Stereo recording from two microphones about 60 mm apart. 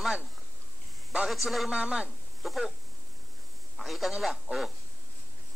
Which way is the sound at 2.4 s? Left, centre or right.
Centre.